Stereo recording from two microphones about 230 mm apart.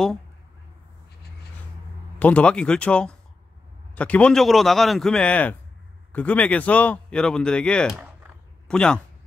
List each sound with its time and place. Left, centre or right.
2.1 s a man's voice: centre